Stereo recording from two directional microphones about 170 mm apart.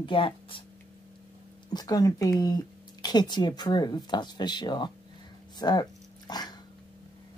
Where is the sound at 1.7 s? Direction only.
20° left (ahead or behind).